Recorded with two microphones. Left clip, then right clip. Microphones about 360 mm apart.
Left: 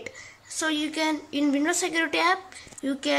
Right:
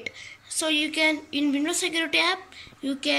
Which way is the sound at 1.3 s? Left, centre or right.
Centre.